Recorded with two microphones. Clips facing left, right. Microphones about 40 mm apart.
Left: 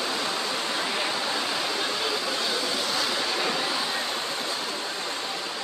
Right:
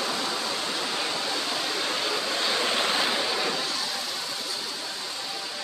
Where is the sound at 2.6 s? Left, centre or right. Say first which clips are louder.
Right 2 dB; right.